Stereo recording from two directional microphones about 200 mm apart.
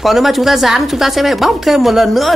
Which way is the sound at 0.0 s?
Centre (ahead or behind).